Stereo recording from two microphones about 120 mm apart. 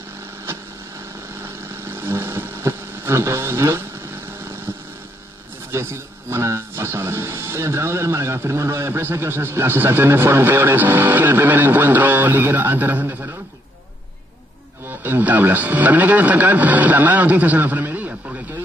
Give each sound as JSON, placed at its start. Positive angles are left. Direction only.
{"t": 1.4, "sound": "vehicle", "side_deg": -20}
{"t": 5.7, "sound": "a man's voice", "side_deg": -20}
{"t": 14.9, "sound": "speech", "side_deg": -15}